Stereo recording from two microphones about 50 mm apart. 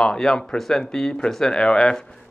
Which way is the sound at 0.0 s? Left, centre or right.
Centre.